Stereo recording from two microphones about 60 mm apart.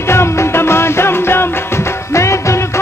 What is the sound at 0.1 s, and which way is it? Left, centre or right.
Music, left.